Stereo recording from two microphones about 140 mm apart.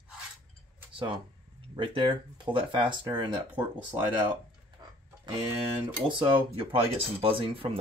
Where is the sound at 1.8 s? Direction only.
40° right (ahead or behind).